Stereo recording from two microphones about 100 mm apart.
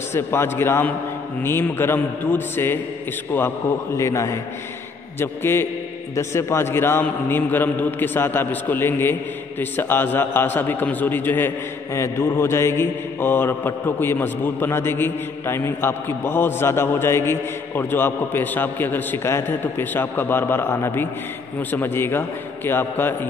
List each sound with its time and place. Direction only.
0.1 s a man's voice: 25° left (ahead or behind)